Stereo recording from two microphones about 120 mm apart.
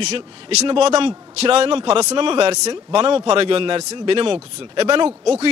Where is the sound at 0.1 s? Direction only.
65° right (ahead or behind).